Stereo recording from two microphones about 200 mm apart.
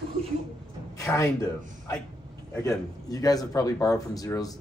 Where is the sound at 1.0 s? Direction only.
15° left (ahead or behind).